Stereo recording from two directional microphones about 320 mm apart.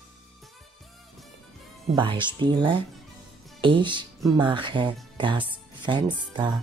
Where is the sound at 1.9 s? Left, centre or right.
Centre.